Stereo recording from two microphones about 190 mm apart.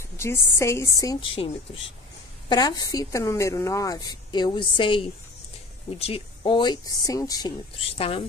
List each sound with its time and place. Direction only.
0.2 s a woman's voice: 15° left (ahead or behind)